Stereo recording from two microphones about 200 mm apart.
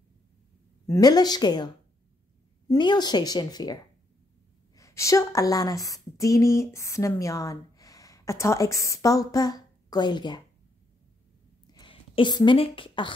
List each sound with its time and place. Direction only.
0.8 s a woman's voice: 15° left (ahead or behind)
2.7 s a woman's voice: 20° left (ahead or behind)
11.6 s a sound: 20° left (ahead or behind)